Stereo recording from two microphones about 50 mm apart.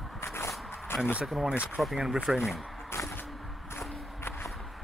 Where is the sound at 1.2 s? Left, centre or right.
Centre.